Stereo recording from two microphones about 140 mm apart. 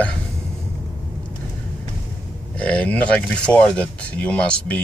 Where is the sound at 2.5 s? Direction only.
10° left (ahead or behind).